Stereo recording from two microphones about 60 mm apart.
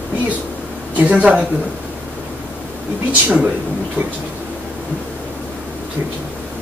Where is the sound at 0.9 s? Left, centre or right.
Right.